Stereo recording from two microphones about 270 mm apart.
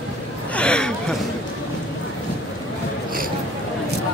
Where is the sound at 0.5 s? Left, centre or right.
Centre.